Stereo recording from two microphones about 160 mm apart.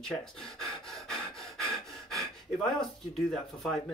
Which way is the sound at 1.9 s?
Centre (ahead or behind).